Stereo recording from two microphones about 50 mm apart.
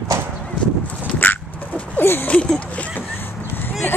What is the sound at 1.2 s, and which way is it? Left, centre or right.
Dog, left.